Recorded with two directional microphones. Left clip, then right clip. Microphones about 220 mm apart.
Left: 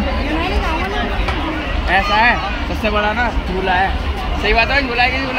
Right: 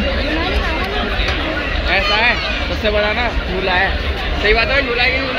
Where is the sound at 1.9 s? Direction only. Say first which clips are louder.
Left 2 dB; 45° left (ahead or behind).